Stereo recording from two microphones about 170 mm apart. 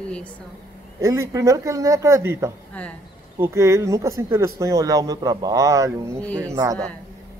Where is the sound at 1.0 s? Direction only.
20° right (ahead or behind).